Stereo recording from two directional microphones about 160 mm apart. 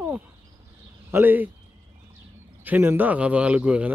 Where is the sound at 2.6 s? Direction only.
10° right (ahead or behind).